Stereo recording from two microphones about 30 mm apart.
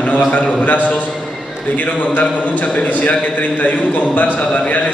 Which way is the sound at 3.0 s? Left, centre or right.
Left.